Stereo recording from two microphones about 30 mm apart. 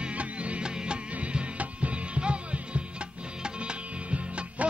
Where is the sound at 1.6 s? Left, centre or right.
Right.